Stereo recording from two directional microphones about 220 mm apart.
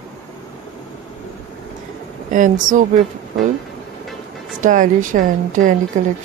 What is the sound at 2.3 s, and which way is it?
Speech, 35° right (ahead or behind).